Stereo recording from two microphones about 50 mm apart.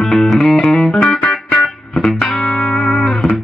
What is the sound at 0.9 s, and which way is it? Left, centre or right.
Music, left.